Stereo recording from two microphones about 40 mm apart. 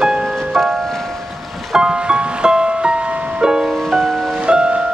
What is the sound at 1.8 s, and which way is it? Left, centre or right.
Music, right.